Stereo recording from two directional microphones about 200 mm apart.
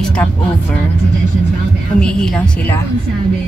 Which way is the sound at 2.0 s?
5° left (ahead or behind).